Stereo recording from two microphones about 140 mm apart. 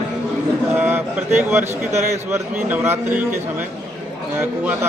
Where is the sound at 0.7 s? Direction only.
15° right (ahead or behind).